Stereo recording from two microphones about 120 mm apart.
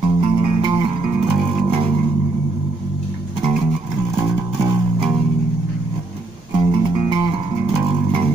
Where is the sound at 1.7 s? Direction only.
55° right (ahead or behind).